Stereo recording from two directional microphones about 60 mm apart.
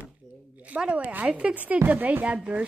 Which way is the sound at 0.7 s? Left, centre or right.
Centre.